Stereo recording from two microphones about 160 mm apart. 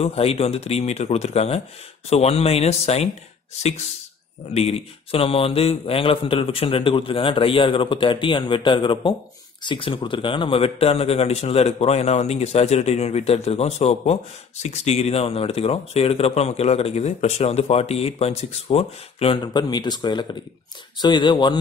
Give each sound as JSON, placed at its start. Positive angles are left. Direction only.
{"t": 0.0, "sound": "speech", "side_deg": 40}
{"t": 4.6, "sound": "speech", "side_deg": 40}